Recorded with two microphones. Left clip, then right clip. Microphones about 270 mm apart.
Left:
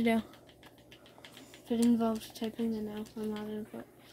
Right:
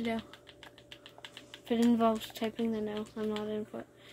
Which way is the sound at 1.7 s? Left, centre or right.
Centre.